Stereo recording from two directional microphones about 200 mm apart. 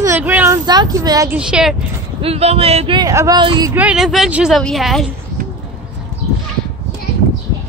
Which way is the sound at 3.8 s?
5° right (ahead or behind).